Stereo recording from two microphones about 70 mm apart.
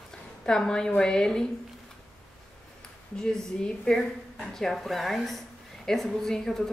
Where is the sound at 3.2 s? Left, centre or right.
Centre.